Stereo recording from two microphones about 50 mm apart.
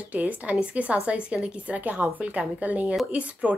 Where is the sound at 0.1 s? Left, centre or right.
Right.